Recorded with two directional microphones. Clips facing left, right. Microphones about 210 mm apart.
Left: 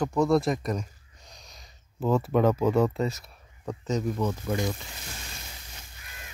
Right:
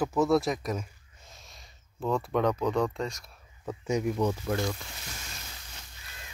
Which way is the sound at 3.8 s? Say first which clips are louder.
Right 1 dB; 10° right (ahead or behind).